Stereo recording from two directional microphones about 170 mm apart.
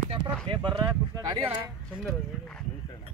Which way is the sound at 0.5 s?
30° right (ahead or behind).